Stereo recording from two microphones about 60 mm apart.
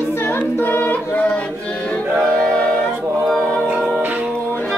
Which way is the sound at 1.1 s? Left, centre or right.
Left.